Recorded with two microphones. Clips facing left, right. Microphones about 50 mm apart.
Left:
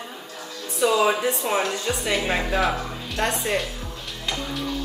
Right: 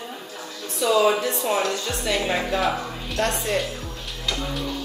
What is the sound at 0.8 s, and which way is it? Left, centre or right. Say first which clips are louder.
Speech: right 1 dB; centre.